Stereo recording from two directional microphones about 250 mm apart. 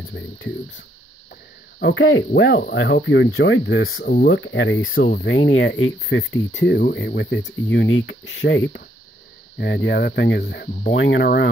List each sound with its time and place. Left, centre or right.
0.1 s speech: left
4.9 s speech: left